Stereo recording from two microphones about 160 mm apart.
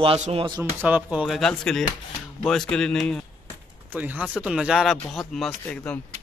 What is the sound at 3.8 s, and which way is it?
A man's voice, 10° right (ahead or behind).